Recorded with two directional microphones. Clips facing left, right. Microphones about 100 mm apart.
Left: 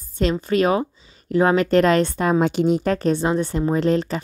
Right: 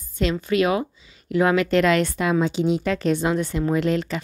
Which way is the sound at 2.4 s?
55° left (ahead or behind).